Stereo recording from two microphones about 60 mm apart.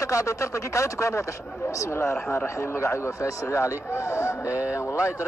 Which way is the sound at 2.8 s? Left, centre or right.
Left.